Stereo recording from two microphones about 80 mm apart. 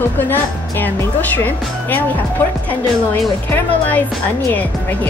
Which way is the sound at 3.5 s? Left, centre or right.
Left.